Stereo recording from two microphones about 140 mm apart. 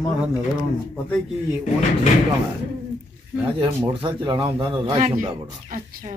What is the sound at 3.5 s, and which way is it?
A man's voice, 35° right (ahead or behind).